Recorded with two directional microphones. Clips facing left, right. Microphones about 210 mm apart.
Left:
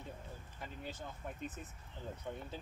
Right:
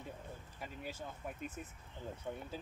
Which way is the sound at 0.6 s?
10° right (ahead or behind).